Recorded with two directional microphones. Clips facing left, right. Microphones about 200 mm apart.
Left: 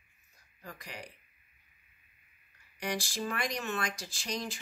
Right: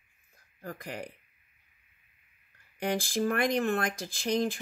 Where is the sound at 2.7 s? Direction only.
55° right (ahead or behind).